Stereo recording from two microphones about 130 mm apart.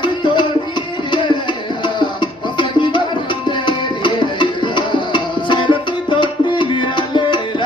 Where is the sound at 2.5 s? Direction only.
35° left (ahead or behind).